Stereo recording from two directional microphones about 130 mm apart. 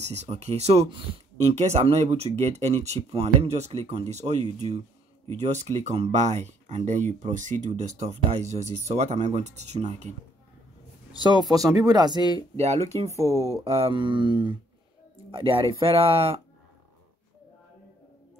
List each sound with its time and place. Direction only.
0.0 s speech: 60° right (ahead or behind)
11.1 s speech: 35° right (ahead or behind)
12.5 s speech: 55° right (ahead or behind)
13.1 s speech: 25° right (ahead or behind)
13.7 s speech: 50° right (ahead or behind)